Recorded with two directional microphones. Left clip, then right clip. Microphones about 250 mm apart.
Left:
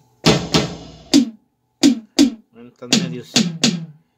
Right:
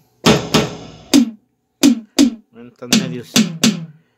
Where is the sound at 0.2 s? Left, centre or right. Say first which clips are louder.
Right 2 dB; centre.